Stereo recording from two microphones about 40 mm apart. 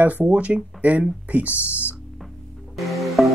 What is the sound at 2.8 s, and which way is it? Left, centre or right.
Music, centre.